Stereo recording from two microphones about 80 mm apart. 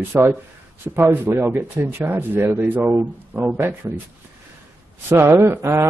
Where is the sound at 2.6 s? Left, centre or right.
Right.